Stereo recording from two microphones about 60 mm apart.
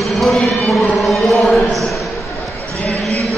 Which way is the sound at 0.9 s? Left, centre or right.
Centre.